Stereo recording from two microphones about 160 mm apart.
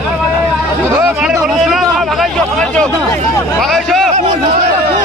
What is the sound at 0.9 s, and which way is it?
Speech, 15° right (ahead or behind).